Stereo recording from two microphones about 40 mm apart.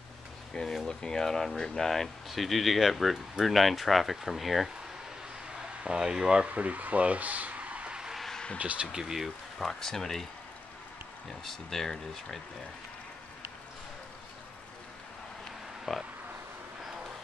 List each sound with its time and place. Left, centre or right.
0.8 s speech: centre
5.9 s speech: centre
6.5 s speech: right
8.9 s speech: centre
9.6 s speech: centre
11.4 s speech: centre
15.9 s speech: centre